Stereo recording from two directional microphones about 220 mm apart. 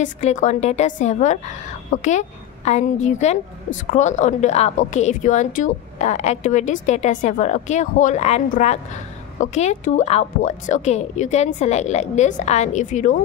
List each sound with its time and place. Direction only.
0.0 s a woman's voice: 35° left (ahead or behind)